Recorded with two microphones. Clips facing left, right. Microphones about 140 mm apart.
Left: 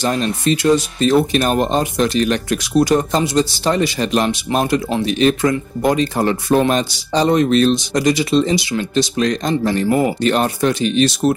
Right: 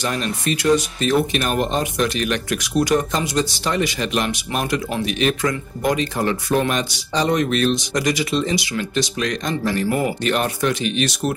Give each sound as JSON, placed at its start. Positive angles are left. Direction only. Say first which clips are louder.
{"t": 0.0, "sound": "speech", "louder": "left 5 dB", "side_deg": 30}